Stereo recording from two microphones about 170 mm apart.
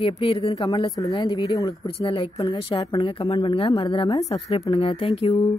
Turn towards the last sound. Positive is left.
turn(degrees=35)  # may be behind; listen again after turning